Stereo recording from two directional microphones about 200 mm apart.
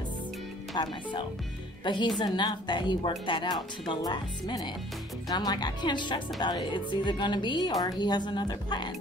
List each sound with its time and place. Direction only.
0.8 s speech: 20° left (ahead or behind)